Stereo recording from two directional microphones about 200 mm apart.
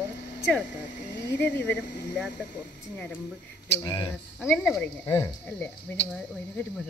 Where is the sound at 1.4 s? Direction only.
10° left (ahead or behind).